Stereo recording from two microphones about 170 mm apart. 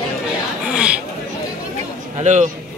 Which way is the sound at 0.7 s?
5° right (ahead or behind).